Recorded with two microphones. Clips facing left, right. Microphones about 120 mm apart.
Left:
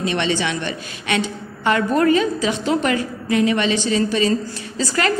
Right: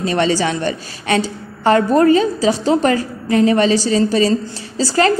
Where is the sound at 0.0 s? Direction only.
40° right (ahead or behind).